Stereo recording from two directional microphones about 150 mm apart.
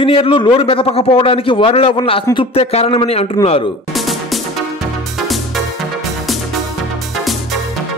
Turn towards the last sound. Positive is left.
turn(degrees=0)  # may be behind; listen again after turning